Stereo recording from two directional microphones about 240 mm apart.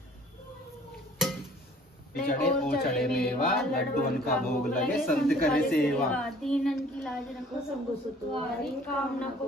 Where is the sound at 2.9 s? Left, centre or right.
Centre.